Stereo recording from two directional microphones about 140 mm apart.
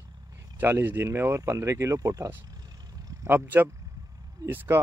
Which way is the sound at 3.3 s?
15° right (ahead or behind).